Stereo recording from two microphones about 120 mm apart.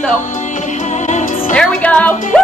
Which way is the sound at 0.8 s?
80° left.